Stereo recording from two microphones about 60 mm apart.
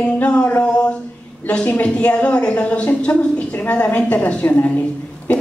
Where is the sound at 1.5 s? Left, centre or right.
Left.